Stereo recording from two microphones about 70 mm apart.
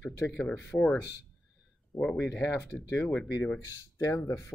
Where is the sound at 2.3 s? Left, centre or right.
Left.